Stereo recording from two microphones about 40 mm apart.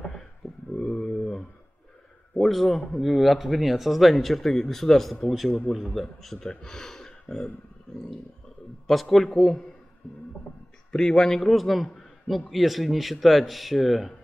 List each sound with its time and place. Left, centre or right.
0.7 s a sound: left
2.3 s a man's voice: centre
5.7 s a man's voice: left
5.9 s a man's voice: centre
6.6 s a sound: centre
9.0 s a man's voice: centre
10.9 s a man's voice: centre